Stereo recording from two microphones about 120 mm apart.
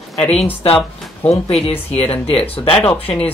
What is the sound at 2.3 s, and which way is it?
Speech, 55° left (ahead or behind).